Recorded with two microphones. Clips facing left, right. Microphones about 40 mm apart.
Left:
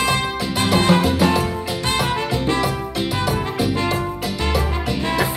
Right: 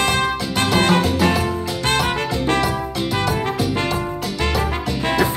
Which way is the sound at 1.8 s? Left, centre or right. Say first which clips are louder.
Right 2 dB; right.